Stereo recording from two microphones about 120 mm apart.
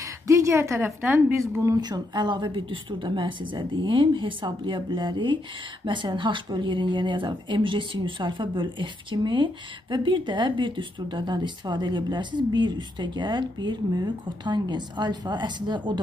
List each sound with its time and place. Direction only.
0.0 s speech: 25° right (ahead or behind)
1.8 s speech: 40° right (ahead or behind)